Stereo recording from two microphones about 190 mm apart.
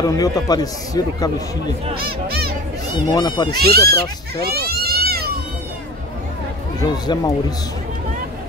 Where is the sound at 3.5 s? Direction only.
55° right (ahead or behind).